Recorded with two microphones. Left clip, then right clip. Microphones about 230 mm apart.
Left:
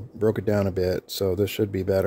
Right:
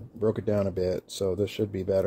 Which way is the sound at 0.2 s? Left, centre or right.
Left.